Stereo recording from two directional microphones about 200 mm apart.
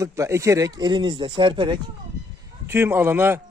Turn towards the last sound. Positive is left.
turn(degrees=-10)  # may be behind; listen again after turning